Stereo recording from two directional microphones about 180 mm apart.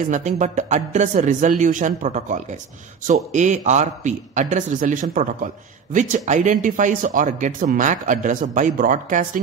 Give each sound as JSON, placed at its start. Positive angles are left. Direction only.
{"t": 0.1, "sound": "a man's voice", "side_deg": -40}